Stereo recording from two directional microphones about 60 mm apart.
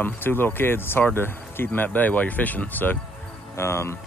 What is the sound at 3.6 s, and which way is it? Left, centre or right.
Speech, left.